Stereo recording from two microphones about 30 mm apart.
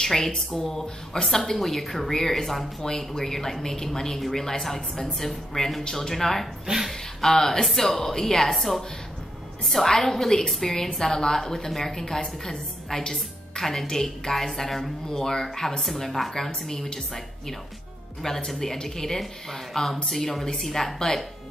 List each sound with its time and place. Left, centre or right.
0.0 s speech: centre
9.8 s a woman's voice: centre
15.8 s speech: centre